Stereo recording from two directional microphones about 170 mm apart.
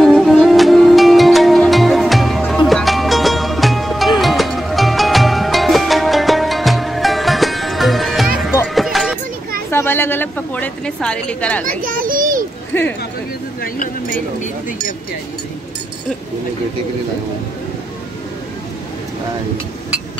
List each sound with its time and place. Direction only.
0.0 s music: centre (ahead or behind)
9.7 s a sound: 15° left (ahead or behind)
11.6 s a child's voice: 55° right (ahead or behind)
12.7 s speech: 10° left (ahead or behind)